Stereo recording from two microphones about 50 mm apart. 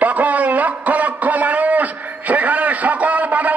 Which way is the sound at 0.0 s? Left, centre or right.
Right.